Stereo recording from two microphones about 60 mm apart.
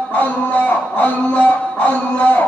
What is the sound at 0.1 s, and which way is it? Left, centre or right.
Music, left.